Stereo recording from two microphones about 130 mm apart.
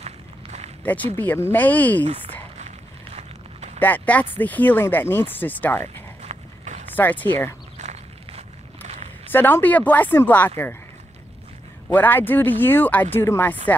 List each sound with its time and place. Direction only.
0.0 s run: 55° right (ahead or behind)
0.8 s speech: 15° left (ahead or behind)
3.2 s walk: 60° right (ahead or behind)
3.8 s speech: 10° left (ahead or behind)
6.2 s horse: 60° right (ahead or behind)
7.0 s speech: 15° left (ahead or behind)
7.7 s walk: 60° right (ahead or behind)
9.3 s speech: 15° left (ahead or behind)
11.9 s speech: 15° left (ahead or behind)